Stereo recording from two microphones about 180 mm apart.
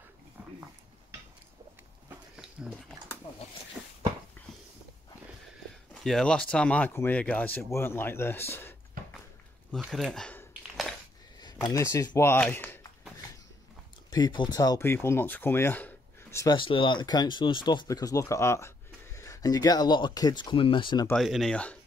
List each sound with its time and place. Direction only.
2.0 s a sound: 5° right (ahead or behind)
6.0 s speech: 5° left (ahead or behind)
9.8 s dishes: centre (ahead or behind)
11.6 s speech: 15° left (ahead or behind)
14.1 s speech: 25° left (ahead or behind)
16.5 s speech: 30° left (ahead or behind)
21.1 s speech: centre (ahead or behind)